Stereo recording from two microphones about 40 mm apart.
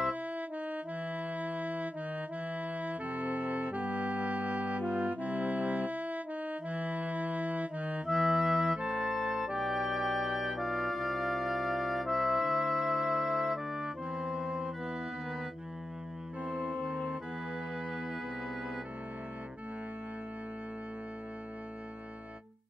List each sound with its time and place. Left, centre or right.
0.1 s music: right
8.1 s music: centre
8.6 s music: right
9.6 s brass instrument: centre
10.6 s music: centre; by 15.0 s right
16.4 s music: right